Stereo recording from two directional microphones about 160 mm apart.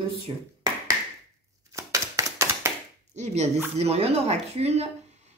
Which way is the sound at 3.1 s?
45° right (ahead or behind).